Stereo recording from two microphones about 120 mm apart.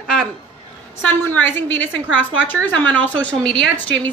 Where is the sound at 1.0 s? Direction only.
15° left (ahead or behind).